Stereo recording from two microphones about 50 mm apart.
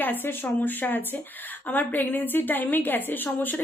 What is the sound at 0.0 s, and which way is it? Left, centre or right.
A woman's voice, left.